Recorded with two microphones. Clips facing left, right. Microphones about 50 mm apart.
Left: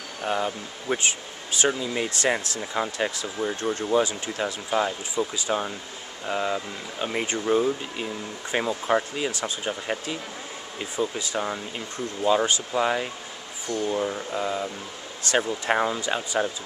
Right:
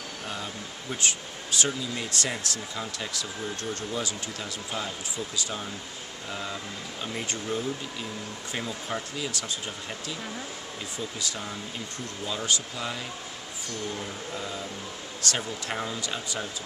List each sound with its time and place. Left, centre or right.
0.2 s speech: left
5.1 s speech: left
10.8 s speech: left
11.3 s speech: left
12.4 s speech: left